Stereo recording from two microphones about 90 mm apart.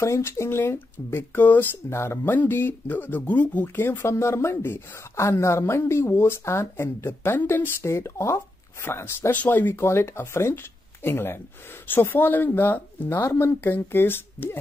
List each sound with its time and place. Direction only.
0.0 s speech: 30° left (ahead or behind)